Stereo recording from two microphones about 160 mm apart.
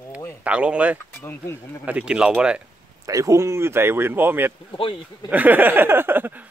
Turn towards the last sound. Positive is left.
turn(degrees=-10)  # may be behind; listen again after turning